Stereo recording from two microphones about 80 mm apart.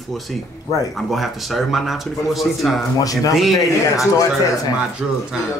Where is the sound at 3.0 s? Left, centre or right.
Left.